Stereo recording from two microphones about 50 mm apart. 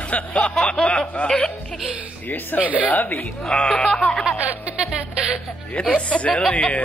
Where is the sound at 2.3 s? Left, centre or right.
Left.